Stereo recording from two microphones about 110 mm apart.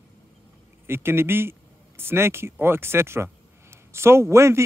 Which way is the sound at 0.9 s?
20° right (ahead or behind).